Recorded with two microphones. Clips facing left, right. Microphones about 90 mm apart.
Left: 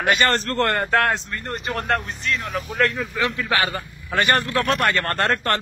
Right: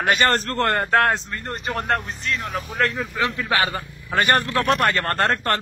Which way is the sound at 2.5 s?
25° right (ahead or behind).